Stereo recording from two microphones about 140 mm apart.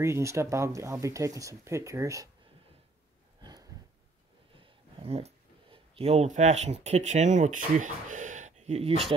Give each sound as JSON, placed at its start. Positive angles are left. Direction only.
{"t": 0.0, "sound": "speech", "side_deg": -20}
{"t": 4.6, "sound": "speech", "side_deg": -45}